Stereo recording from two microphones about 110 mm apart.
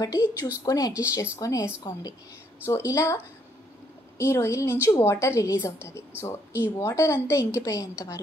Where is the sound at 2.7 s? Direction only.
30° left (ahead or behind).